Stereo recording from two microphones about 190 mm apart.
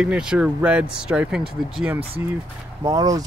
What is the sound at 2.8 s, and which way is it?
Speech, 20° right (ahead or behind).